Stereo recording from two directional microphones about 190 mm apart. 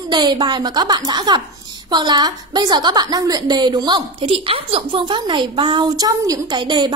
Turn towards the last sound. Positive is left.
turn(degrees=-25)  # may be behind; listen again after turning